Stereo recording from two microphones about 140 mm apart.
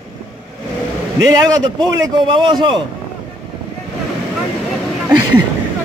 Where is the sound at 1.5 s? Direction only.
30° right (ahead or behind).